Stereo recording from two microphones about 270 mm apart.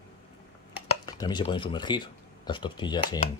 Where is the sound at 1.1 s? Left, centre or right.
Centre.